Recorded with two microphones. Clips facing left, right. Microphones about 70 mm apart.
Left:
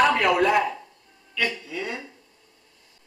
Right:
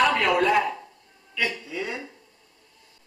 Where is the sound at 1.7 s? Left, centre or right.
Centre.